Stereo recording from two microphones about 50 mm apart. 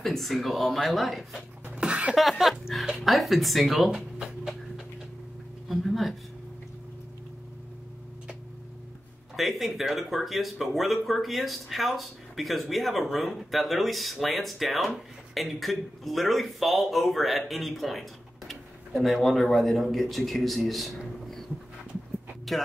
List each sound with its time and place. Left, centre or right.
0.0 s speech: centre
1.8 s a sound: right
2.1 s speech: centre
5.7 s speech: centre
9.4 s speech: centre
18.5 s a sound: centre
19.5 s a man's voice: centre
22.5 s speech: centre